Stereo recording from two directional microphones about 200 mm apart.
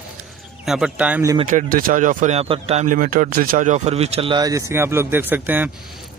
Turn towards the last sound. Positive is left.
turn(degrees=-10)  # may be behind; listen again after turning